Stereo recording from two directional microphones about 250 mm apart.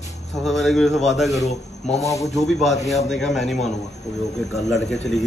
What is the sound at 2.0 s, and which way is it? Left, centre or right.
Speech, centre.